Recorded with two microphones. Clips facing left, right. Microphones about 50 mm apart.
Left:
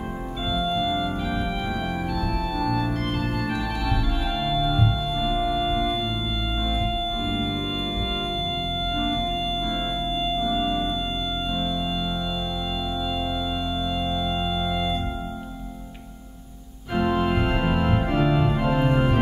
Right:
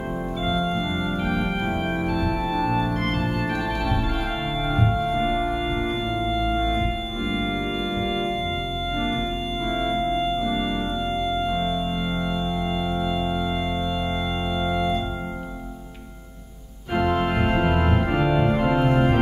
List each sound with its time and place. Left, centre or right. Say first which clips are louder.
2.0 s organ: right 3 dB; centre
4.5 s music: left 1 dB; right
5.1 s music: right 2 dB; right
5.5 s music: left 1 dB; centre
6.6 s music: right 3 dB; right
9.7 s music: right 4 dB; right
17.2 s organ: right 1 dB; centre